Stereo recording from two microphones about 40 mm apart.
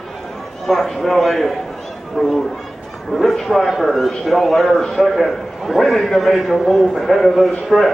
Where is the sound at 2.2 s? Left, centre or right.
Right.